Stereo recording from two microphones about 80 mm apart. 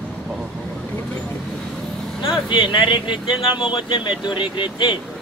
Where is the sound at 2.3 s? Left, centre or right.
Left.